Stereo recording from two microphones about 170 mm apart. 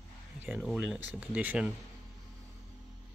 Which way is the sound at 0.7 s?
5° right (ahead or behind).